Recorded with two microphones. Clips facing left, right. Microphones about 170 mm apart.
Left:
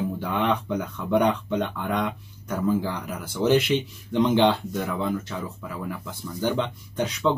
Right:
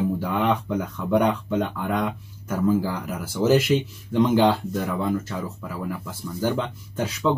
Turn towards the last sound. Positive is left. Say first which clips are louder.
# even
turn(degrees=0)  # may be behind; listen again after turning